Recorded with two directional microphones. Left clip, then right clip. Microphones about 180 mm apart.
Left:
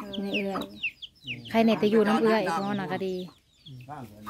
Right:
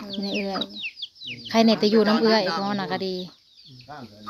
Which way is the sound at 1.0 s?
60° left (ahead or behind).